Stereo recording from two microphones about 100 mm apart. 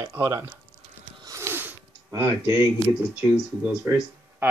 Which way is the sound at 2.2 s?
20° right (ahead or behind).